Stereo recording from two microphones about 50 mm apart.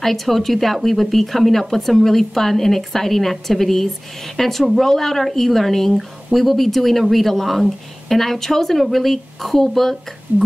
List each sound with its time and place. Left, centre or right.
0.0 s a woman's voice: centre
10.3 s speech: right